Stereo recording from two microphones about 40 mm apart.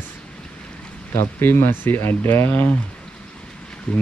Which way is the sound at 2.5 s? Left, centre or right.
Left.